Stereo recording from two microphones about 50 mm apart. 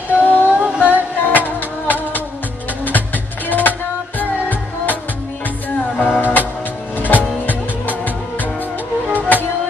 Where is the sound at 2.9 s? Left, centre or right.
Left.